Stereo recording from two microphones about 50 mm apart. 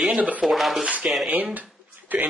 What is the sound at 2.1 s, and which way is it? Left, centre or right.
Speech, right.